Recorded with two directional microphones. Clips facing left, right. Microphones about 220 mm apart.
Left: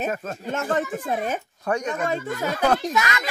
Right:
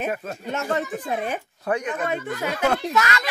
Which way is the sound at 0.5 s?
50° left (ahead or behind).